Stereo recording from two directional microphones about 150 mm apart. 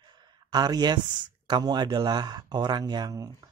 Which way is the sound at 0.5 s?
25° right (ahead or behind).